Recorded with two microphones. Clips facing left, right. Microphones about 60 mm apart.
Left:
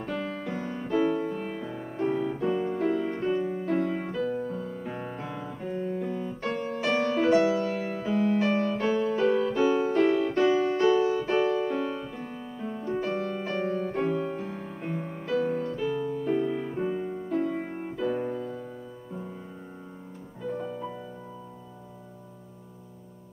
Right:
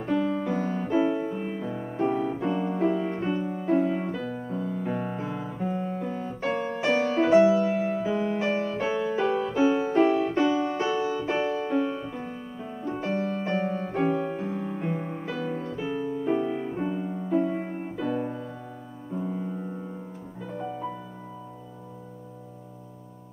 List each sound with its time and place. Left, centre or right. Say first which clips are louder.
0.0 s music: right 6 dB; centre
4.3 s music: even; centre
4.7 s piano: right 5 dB; centre
6.9 s music: right 2 dB; centre
18.3 s music: left 3 dB; centre
19.1 s music: right 10 dB; centre